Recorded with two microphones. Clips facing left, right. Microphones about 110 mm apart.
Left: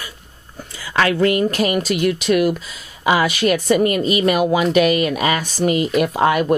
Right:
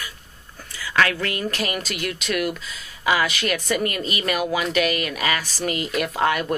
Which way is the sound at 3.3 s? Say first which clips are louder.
Left 8 dB; 35° left (ahead or behind).